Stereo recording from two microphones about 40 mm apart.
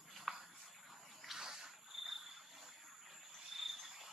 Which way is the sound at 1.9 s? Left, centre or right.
Centre.